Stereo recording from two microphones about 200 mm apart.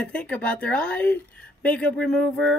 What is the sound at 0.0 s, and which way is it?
Speech, 5° left (ahead or behind).